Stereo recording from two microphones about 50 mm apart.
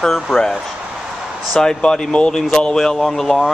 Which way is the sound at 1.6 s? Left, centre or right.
Centre.